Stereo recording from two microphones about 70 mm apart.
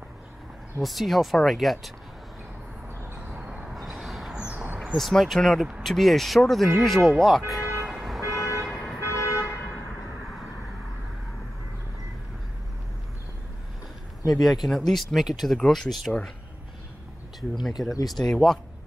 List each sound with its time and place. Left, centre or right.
0.8 s speech: centre
2.9 s vehicle: right
3.3 s vehicle: centre
3.7 s vehicle: centre
4.4 s a sound: centre
4.9 s speech: centre
7.8 s vehicle: centre
8.3 s vehicle: left
8.6 s vehicle: centre
9.0 s toot: left
14.3 s speech: centre
17.6 s speech: centre